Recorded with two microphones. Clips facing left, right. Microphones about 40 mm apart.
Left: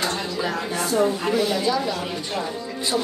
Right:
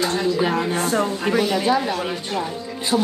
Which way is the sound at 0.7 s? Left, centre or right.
Right.